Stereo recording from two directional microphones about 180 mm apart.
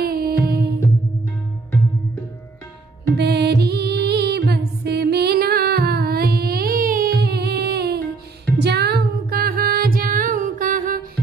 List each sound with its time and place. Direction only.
0.0 s music: 55° right (ahead or behind)
3.2 s music: 65° right (ahead or behind); by 11.1 s 50° right (ahead or behind)